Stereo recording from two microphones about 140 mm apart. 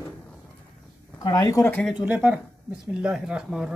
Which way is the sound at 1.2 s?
25° left (ahead or behind).